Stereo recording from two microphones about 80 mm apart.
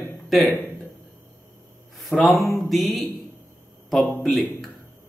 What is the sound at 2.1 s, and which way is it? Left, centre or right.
Speech, centre.